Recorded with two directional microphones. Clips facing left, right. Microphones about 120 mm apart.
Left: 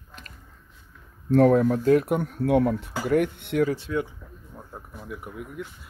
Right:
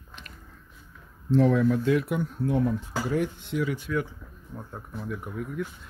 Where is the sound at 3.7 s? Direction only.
30° left (ahead or behind).